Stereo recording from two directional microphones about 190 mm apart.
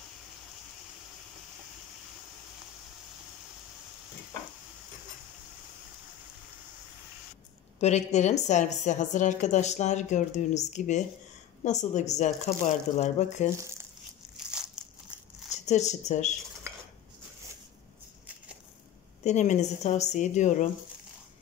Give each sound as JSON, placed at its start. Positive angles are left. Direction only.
{"t": 7.8, "sound": "a woman's voice", "side_deg": 35}
{"t": 13.6, "sound": "speech", "side_deg": -15}
{"t": 14.3, "sound": "a sound", "side_deg": -5}
{"t": 15.6, "sound": "a woman's voice", "side_deg": 35}
{"t": 19.2, "sound": "a woman's voice", "side_deg": 35}